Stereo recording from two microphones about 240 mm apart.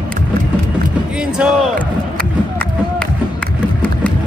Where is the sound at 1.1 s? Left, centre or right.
Centre.